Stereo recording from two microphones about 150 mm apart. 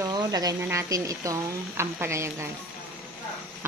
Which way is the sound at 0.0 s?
25° right (ahead or behind).